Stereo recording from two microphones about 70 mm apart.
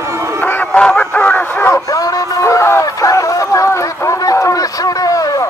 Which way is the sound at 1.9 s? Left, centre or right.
Left.